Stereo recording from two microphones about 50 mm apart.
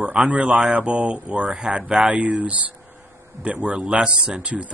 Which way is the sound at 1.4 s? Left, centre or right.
Centre.